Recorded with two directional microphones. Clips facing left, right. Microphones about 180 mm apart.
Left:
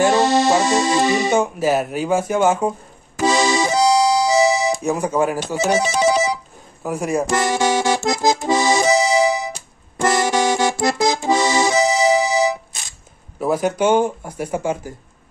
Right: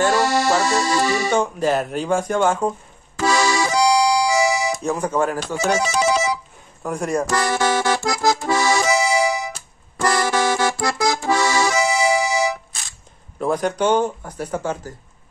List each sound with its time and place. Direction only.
0.0 s accordion: 20° left (ahead or behind)
1.3 s speech: 5° left (ahead or behind)
3.2 s music: 20° left (ahead or behind)
4.8 s speech: 10° left (ahead or behind)
5.6 s ringtone: 20° left (ahead or behind)
6.8 s speech: 5° left (ahead or behind)
7.2 s accordion: 20° left (ahead or behind)
13.4 s speech: 5° left (ahead or behind)